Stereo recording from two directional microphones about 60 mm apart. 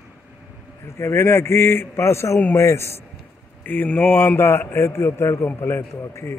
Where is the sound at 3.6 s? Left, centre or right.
Left.